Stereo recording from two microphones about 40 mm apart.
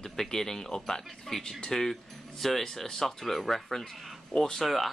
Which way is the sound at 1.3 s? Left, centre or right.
Centre.